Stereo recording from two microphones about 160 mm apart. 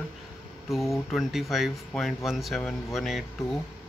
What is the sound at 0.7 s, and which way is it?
Speech, centre (ahead or behind).